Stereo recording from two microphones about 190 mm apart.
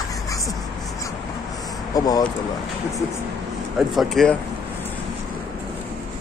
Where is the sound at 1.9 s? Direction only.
20° left (ahead or behind).